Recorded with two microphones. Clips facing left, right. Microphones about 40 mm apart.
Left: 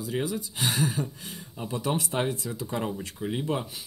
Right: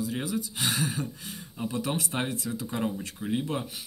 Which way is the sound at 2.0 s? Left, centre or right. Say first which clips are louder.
Left 2 dB; centre.